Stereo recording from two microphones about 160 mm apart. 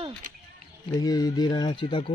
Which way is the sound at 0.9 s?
20° left (ahead or behind).